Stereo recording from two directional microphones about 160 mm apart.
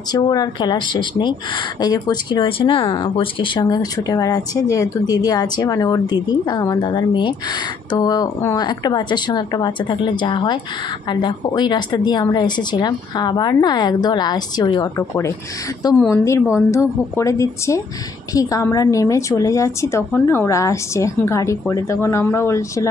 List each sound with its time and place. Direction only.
0.1 s a woman's voice: 25° left (ahead or behind)